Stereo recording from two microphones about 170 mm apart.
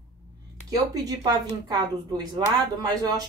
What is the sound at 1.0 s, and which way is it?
Speech, 25° right (ahead or behind).